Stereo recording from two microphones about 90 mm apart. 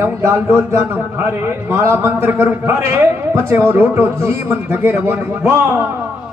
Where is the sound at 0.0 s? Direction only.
30° right (ahead or behind).